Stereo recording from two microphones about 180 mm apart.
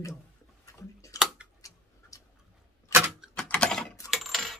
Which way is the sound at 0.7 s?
20° left (ahead or behind).